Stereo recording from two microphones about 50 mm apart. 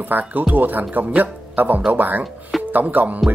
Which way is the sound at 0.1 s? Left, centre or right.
Right.